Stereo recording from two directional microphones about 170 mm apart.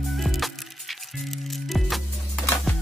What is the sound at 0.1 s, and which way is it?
Music, centre (ahead or behind).